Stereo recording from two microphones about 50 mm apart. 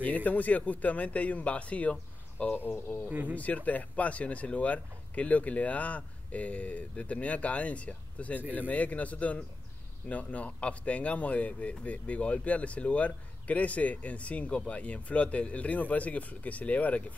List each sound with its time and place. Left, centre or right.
0.0 s speech: left
3.1 s speech: right
3.3 s speech: left